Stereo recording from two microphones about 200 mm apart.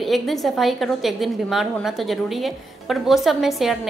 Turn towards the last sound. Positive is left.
turn(degrees=0)  # may be behind; listen again after turning